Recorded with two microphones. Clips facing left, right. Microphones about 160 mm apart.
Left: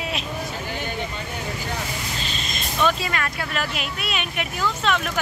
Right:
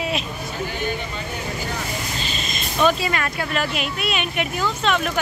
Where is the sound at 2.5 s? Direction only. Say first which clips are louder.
Right 3 dB; 5° right (ahead or behind).